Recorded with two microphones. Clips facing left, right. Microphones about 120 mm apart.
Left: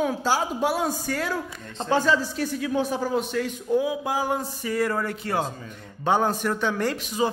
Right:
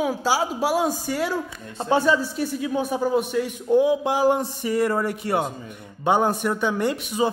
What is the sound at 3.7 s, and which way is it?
Speech, 25° right (ahead or behind).